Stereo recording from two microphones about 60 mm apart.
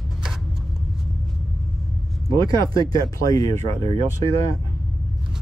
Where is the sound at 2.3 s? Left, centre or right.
Left.